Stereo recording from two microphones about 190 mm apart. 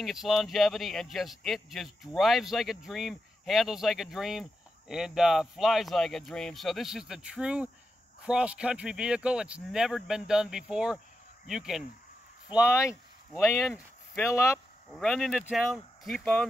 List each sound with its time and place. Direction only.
0.0 s speech: centre (ahead or behind)
12.6 s speech: 15° left (ahead or behind)
13.4 s speech: centre (ahead or behind)
14.2 s speech: 15° left (ahead or behind)
15.0 s speech: 5° left (ahead or behind)